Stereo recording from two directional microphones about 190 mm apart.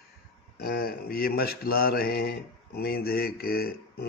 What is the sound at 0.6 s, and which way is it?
Mantra, 50° left (ahead or behind).